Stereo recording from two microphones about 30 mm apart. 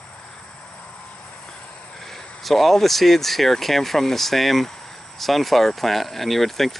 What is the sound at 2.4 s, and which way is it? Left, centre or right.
Speech, centre.